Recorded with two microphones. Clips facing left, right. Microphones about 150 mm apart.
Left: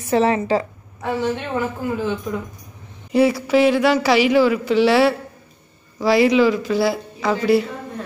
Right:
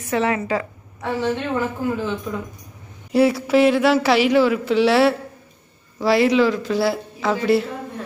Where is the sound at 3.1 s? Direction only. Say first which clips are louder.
Even; centre (ahead or behind).